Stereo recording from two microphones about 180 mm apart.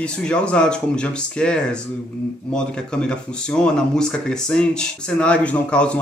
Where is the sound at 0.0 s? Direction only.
5° left (ahead or behind).